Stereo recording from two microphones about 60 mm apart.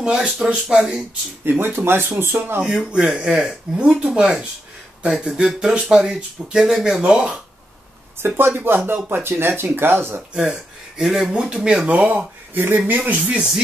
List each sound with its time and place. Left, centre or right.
0.0 s speech: centre
1.4 s speech: right
2.6 s speech: centre
8.4 s speech: right
10.3 s speech: centre
11.9 s speech: right
12.9 s speech: centre